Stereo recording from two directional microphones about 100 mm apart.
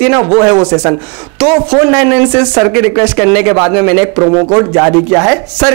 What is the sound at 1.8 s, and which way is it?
A man's voice, 15° right (ahead or behind).